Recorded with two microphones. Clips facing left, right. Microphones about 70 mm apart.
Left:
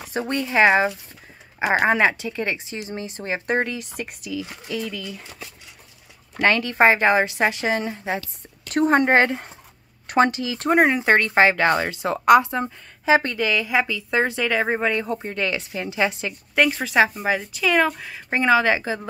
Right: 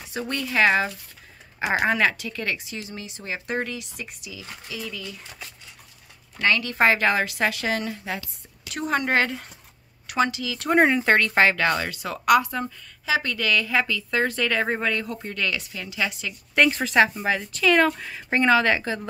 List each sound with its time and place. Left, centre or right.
0.3 s speech: left
6.3 s speech: left
8.6 s speech: left
10.8 s speech: centre; by 16.3 s left
16.5 s speech: centre